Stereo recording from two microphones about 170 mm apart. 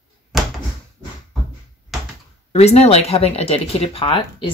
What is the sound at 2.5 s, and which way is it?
Speech, 40° left (ahead or behind).